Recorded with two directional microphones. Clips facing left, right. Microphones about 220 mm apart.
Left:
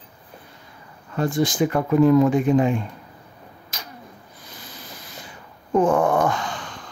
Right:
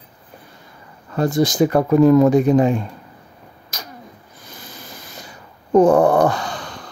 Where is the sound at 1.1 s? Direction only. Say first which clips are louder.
Right 4 dB; 40° right (ahead or behind).